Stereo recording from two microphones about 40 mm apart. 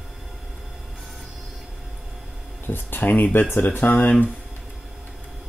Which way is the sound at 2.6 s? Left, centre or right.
Left.